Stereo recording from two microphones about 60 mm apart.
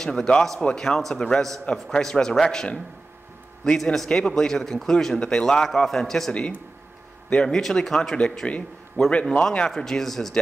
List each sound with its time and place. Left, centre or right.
0.0 s a man's voice: centre
8.5 s a man's voice: left; by 10.4 s centre